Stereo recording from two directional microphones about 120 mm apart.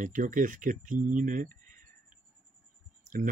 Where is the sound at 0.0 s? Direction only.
90° right.